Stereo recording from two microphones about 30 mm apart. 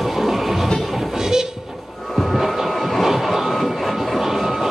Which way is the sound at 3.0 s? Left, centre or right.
Centre.